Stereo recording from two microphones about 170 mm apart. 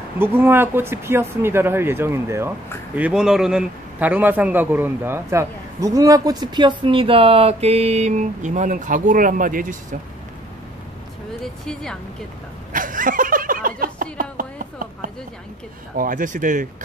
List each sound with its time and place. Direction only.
0.2 s speech: 15° right (ahead or behind)
3.0 s a man's voice: 5° right (ahead or behind); by 9.9 s 50° right (ahead or behind)
11.6 s speech: 5° left (ahead or behind)
12.7 s a sound: 50° right (ahead or behind)
16.0 s speech: 50° right (ahead or behind)